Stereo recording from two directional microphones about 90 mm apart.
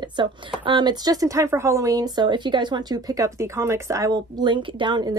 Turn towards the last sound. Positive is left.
turn(degrees=-55)  # may be behind; listen again after turning